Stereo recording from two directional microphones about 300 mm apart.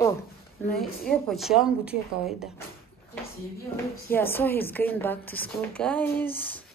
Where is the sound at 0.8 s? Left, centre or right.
Centre.